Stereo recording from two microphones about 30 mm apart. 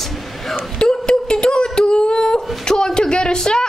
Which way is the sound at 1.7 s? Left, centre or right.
Left.